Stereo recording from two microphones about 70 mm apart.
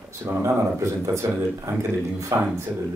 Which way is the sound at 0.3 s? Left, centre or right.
Right.